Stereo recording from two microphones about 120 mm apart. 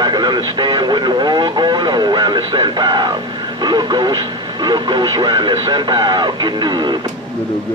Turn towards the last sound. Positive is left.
turn(degrees=-40)  # may be behind; listen again after turning